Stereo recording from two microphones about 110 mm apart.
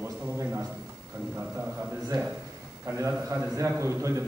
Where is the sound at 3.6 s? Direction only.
25° right (ahead or behind).